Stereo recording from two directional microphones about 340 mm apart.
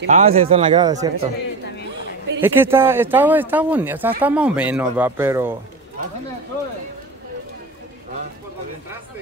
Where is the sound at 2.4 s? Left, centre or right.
Centre.